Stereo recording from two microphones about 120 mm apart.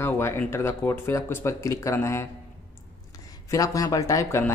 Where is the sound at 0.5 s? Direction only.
20° left (ahead or behind).